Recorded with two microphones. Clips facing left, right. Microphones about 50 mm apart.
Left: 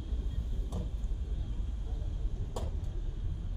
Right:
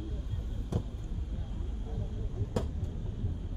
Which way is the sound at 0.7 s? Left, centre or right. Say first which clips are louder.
Right 6 dB; right.